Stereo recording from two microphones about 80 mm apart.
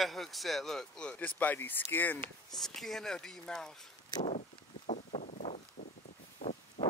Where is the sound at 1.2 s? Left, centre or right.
Left.